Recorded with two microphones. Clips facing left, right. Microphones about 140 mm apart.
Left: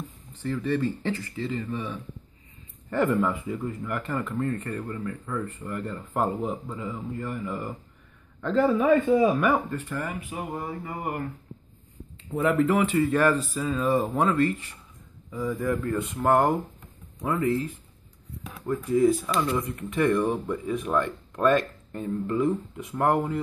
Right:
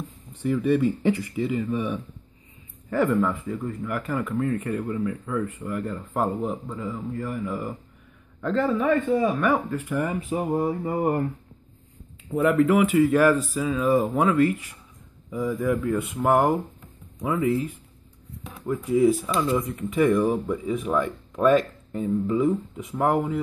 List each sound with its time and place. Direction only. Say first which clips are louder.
0.4 s speech: right 5 dB; 15° right (ahead or behind)
2.9 s speech: right 2 dB; centre (ahead or behind)
9.5 s speech: right 1 dB; 5° right (ahead or behind)
10.0 s speech: right 7 dB; 35° right (ahead or behind)
12.3 s speech: right 3 dB; centre (ahead or behind)
18.7 s speech: right 1 dB; 5° right (ahead or behind)